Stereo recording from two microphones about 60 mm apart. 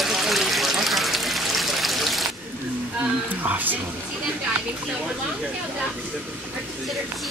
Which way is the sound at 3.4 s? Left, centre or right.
Right.